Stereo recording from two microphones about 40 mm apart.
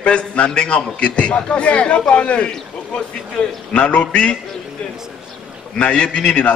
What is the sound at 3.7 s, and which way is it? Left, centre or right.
Speech, left.